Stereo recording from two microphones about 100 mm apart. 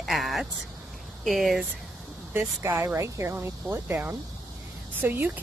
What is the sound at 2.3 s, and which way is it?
Speech, 25° right (ahead or behind).